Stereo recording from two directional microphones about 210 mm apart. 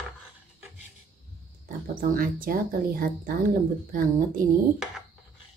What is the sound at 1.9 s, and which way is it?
Speech, 40° right (ahead or behind).